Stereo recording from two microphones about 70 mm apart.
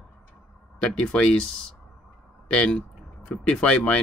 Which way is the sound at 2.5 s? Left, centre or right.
Centre.